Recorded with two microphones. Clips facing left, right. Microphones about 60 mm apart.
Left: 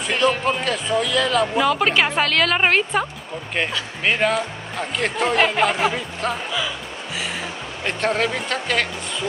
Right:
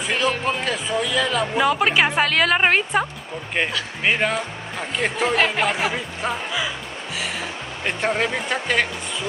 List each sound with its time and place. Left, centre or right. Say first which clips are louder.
0.1 s speech: left 3 dB; centre
7.8 s speech: left 1 dB; centre